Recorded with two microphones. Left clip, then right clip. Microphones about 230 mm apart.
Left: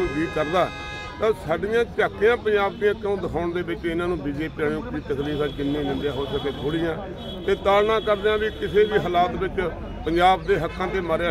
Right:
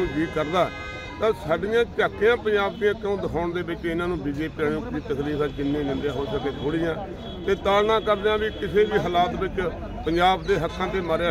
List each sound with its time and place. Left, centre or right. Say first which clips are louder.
0.4 s a man's voice: left 1 dB; centre
6.0 s a man's voice: left 1 dB; centre